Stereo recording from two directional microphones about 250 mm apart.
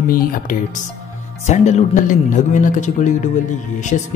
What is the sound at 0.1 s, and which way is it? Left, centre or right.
A woman's voice, left.